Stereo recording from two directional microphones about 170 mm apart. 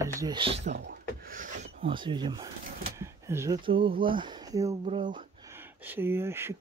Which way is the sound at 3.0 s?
15° right (ahead or behind).